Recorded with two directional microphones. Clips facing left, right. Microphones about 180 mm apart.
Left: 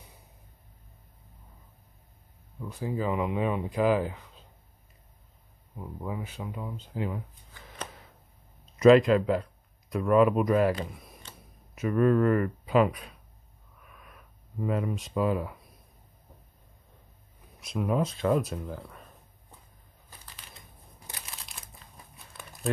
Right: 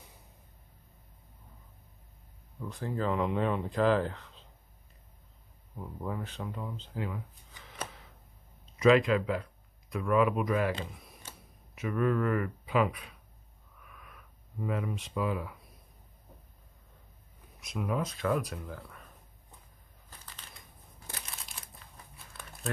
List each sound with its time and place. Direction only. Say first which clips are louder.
2.6 s speech: left 2 dB; 10° left (ahead or behind)
5.8 s speech: left 1 dB; 10° left (ahead or behind)
8.7 s speech: left 5 dB; 40° left (ahead or behind)
11.7 s speech: left 6 dB; 40° left (ahead or behind)
14.6 s speech: left 4 dB; 40° left (ahead or behind)
17.6 s speech: left 5 dB; 30° left (ahead or behind)